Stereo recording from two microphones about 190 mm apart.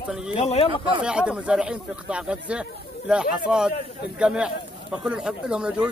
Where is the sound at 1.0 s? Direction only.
5° right (ahead or behind).